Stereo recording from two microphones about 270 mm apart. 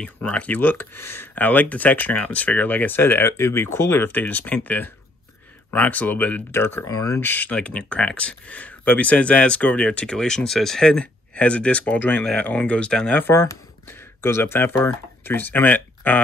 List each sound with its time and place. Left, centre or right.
0.0 s speech: centre